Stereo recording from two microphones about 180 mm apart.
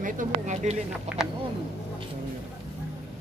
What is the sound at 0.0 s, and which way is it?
Speech, 45° right (ahead or behind).